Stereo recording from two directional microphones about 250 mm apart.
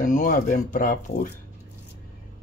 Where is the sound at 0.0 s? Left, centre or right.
Left.